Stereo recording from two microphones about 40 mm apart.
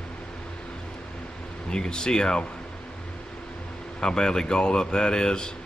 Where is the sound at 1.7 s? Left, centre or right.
Centre.